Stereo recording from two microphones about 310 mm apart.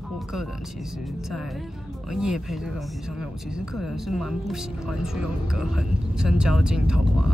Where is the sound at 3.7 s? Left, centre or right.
Centre.